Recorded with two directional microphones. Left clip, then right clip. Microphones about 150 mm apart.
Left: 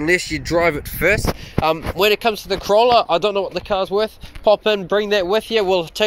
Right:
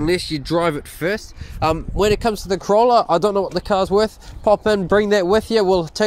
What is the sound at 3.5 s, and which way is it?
Speech, 65° right (ahead or behind).